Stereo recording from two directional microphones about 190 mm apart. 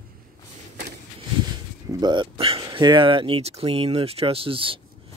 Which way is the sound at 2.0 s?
25° right (ahead or behind).